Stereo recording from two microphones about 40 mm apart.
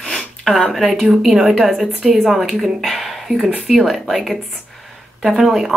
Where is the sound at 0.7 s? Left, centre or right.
Centre.